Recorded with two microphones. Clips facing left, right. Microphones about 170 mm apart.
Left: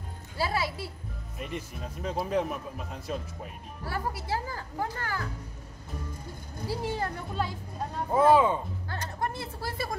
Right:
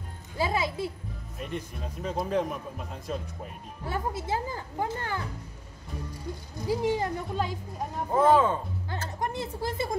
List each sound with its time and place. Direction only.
0.4 s a woman's voice: 20° right (ahead or behind)
1.4 s speech: centre (ahead or behind)
3.8 s a woman's voice: 20° right (ahead or behind)
6.7 s speech: 15° right (ahead or behind)
8.1 s speech: 10° left (ahead or behind)
9.2 s a woman's voice: 15° right (ahead or behind)